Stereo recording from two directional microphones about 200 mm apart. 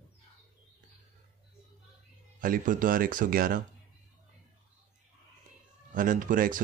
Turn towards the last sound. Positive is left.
turn(degrees=-45)  # may be behind; listen again after turning